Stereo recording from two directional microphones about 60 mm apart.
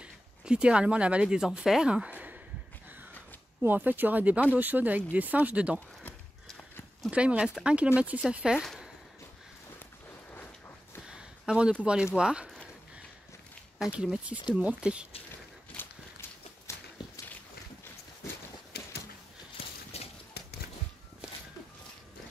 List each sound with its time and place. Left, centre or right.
0.0 s speech: centre
3.6 s speech: right
7.1 s speech: centre
11.1 s a sound: centre
11.8 s speech: centre
14.2 s speech: right
15.7 s walk: left
16.7 s walk: left